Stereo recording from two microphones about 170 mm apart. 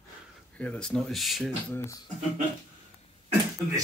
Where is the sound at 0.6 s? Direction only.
5° left (ahead or behind).